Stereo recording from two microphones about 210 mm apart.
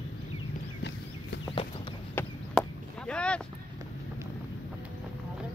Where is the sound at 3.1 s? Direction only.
5° left (ahead or behind).